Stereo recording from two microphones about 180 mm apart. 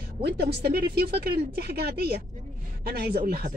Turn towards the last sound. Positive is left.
turn(degrees=-55)  # may be behind; listen again after turning